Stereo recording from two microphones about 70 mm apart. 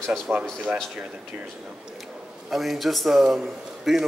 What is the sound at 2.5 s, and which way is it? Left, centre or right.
A man's voice, centre.